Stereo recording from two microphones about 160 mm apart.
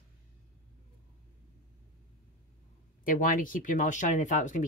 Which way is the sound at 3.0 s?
60° left (ahead or behind).